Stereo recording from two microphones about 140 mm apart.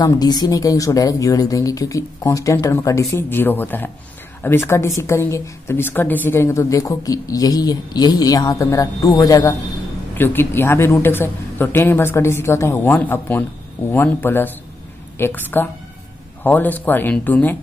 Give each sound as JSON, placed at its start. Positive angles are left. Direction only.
{"t": 0.0, "sound": "a woman's voice", "side_deg": 30}